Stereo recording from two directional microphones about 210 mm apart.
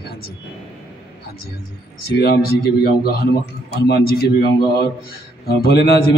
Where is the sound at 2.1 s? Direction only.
50° left (ahead or behind).